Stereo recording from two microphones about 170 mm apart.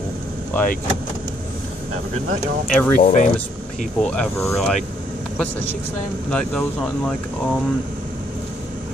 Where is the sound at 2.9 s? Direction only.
50° left (ahead or behind).